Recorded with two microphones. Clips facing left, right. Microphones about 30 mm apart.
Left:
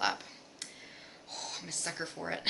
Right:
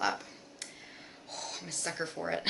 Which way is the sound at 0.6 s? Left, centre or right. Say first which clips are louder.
Even; centre.